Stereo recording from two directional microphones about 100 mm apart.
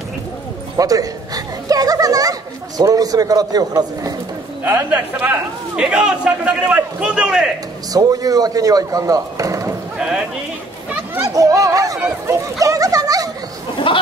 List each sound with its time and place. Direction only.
0.7 s speech: 35° right (ahead or behind)
4.6 s a man's voice: 20° right (ahead or behind)
7.9 s speech: 40° right (ahead or behind)
11.1 s speech: 35° right (ahead or behind)
13.9 s a sound: 60° left (ahead or behind)